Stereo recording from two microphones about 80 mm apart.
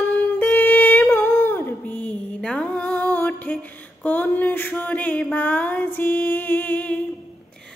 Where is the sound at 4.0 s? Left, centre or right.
Left.